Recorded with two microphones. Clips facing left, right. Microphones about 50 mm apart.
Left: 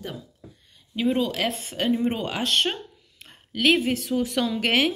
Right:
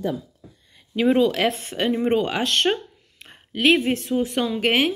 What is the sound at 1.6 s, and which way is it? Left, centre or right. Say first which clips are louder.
Speech: right 1 dB; right.